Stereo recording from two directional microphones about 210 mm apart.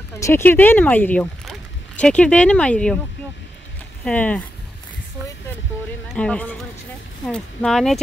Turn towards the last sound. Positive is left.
turn(degrees=0)  # may be behind; listen again after turning